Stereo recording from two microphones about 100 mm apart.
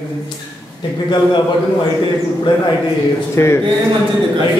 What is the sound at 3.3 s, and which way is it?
Speech, 25° left (ahead or behind).